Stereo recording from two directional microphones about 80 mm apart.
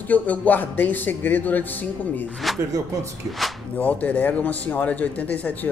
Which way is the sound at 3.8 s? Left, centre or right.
Centre.